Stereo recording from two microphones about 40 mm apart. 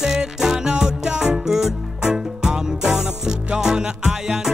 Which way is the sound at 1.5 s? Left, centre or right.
Centre.